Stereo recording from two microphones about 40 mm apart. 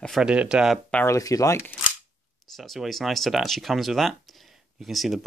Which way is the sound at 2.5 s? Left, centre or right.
Centre.